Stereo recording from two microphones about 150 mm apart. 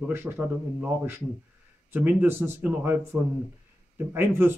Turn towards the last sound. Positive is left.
turn(degrees=-15)  # may be behind; listen again after turning